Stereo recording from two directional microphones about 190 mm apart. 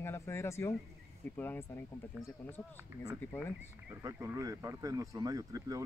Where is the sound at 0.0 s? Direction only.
15° left (ahead or behind).